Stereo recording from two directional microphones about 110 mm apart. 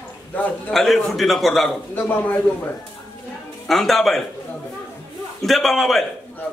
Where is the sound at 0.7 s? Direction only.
Centre (ahead or behind).